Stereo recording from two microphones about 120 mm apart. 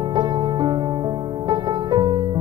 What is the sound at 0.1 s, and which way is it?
Music, 35° right (ahead or behind).